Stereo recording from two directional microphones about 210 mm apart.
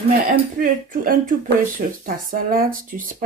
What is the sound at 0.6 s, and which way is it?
Speech, 40° right (ahead or behind).